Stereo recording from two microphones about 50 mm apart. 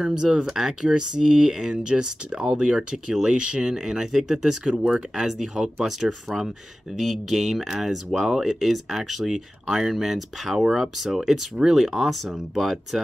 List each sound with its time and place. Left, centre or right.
0.0 s speech: centre
0.5 s speech: centre